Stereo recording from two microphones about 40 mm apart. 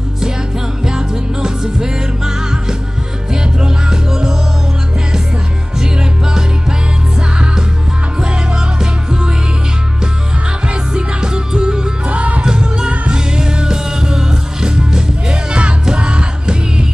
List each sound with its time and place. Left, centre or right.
0.8 s music: centre
3.6 s music: centre
8.2 s music: centre
10.7 s music: right
12.1 s music: right
12.4 s music: centre